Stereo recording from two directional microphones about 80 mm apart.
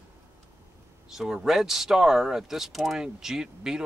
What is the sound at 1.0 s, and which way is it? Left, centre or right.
Speech, centre.